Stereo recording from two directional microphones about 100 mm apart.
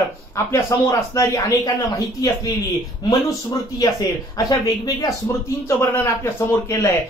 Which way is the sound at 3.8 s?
35° left (ahead or behind).